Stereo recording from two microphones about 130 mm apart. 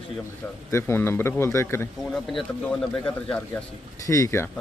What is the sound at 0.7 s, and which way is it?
Speech, 20° left (ahead or behind).